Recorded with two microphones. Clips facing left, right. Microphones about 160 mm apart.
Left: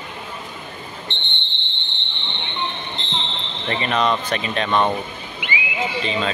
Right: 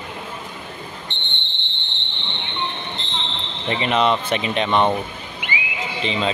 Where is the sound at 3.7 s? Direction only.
20° right (ahead or behind).